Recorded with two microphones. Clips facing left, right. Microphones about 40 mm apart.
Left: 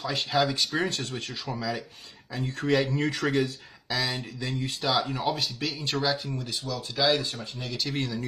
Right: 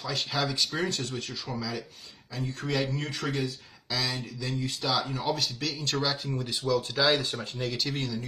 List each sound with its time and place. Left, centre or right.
0.0 s speech: left
5.3 s speech: centre
5.9 s speech: centre
6.7 s speech: right
7.6 s speech: centre